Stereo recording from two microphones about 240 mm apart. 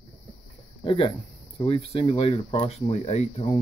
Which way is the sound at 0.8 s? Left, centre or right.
Left.